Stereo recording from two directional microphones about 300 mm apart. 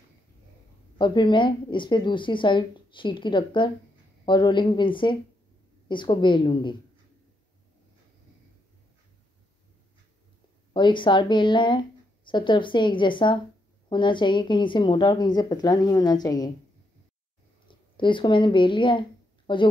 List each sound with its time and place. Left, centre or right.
0.9 s a woman's voice: centre
10.7 s a woman's voice: centre
17.6 s speech: centre